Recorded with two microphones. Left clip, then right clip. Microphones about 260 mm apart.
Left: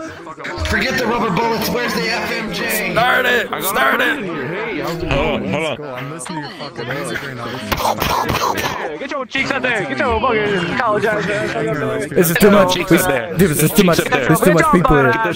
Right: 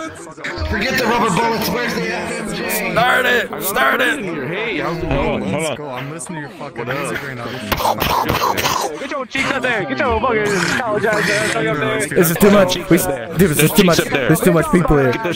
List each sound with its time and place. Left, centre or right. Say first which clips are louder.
0.9 s speech: right 2 dB; centre
1.4 s a man's voice: even; centre
2.0 s speech: left 2 dB; left
3.0 s a man's voice: even; centre
4.6 s a man's voice: right 3 dB; right
5.0 s speech: left 4 dB; left
7.7 s a man's voice: right 1 dB; centre
9.5 s a man's voice: right 1 dB; centre